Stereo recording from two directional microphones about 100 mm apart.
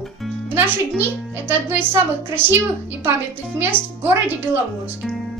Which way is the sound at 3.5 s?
20° right (ahead or behind).